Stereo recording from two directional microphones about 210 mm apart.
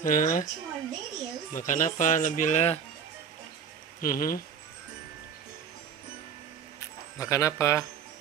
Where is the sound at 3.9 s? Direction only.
40° left (ahead or behind).